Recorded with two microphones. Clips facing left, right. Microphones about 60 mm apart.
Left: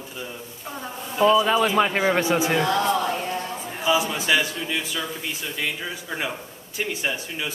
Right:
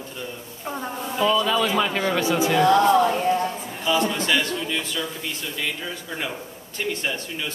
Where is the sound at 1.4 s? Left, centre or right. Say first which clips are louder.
Left 2 dB; left.